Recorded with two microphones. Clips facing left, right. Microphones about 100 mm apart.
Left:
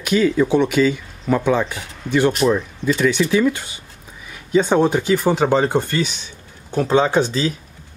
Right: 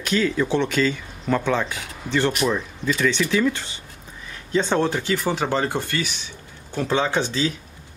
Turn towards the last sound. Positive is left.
turn(degrees=15)  # may be behind; listen again after turning